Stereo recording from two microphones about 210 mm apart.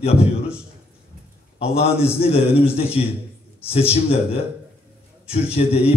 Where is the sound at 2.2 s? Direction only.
30° left (ahead or behind).